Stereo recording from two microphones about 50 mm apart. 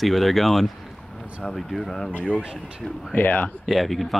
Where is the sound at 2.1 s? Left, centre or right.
Left.